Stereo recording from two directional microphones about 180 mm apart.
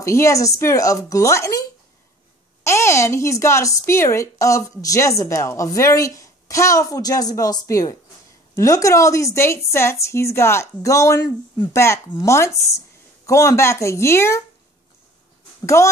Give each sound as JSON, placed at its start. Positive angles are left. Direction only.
{"t": 0.0, "sound": "a woman's voice", "side_deg": 15}
{"t": 15.6, "sound": "a woman's voice", "side_deg": 15}